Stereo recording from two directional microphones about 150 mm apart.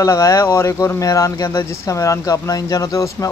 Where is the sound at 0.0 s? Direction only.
20° left (ahead or behind).